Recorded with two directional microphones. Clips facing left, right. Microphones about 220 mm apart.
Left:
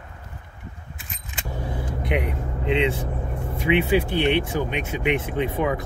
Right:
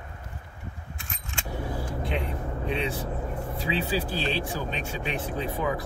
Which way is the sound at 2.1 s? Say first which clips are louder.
Left 7 dB; 15° left (ahead or behind).